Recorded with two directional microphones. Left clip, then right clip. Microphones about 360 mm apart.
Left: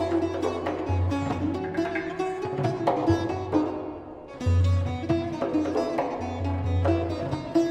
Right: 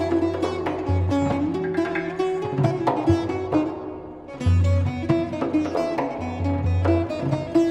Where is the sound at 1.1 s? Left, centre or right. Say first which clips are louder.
Right 7 dB; right.